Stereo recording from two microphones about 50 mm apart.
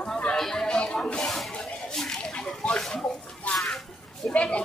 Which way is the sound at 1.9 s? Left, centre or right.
Centre.